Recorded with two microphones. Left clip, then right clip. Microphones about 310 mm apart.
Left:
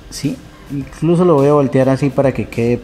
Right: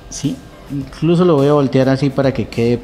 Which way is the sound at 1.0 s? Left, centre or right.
Centre.